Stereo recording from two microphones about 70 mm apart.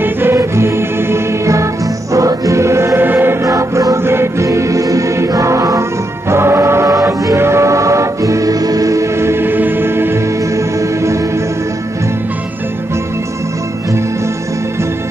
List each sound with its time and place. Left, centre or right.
0.0 s music: right
3.0 s choir: right
3.4 s music: right
7.3 s music: right
10.5 s music: right